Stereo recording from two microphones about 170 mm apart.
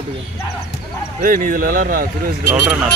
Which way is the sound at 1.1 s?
50° right (ahead or behind).